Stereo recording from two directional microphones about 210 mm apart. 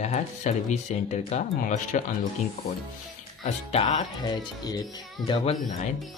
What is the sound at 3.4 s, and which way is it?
Speech, 30° left (ahead or behind).